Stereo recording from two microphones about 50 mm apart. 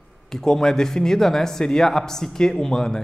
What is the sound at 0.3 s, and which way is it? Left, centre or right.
Speech, centre.